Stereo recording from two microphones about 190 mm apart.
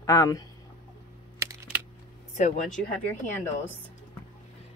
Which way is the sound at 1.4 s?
15° right (ahead or behind).